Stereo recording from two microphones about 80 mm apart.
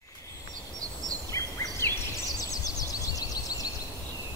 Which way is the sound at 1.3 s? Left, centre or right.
Left.